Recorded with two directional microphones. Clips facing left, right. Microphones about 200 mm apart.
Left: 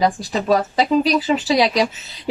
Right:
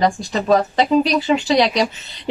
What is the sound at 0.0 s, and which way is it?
Speech, 5° left (ahead or behind).